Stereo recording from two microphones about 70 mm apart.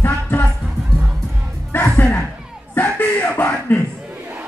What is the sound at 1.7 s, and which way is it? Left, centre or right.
Music, left.